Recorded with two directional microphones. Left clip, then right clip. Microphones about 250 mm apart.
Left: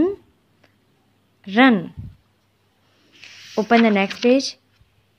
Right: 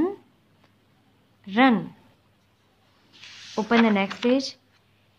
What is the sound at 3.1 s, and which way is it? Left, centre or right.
Speech, centre.